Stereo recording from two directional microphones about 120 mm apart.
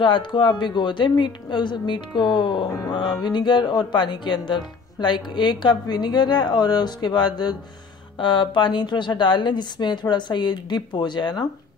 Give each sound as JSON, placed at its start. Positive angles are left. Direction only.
{"t": 0.0, "sound": "speech", "side_deg": 40}